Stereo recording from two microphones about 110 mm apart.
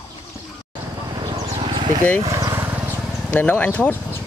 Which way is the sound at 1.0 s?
40° right (ahead or behind).